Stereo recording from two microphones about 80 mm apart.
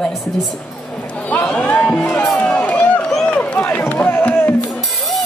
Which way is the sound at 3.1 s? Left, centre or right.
Centre.